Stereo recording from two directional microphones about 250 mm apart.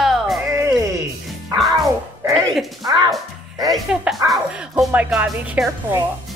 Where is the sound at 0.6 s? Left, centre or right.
Centre.